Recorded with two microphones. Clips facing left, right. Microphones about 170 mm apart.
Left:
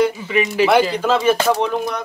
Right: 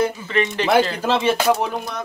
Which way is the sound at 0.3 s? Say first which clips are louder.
Left 3 dB; 5° left (ahead or behind).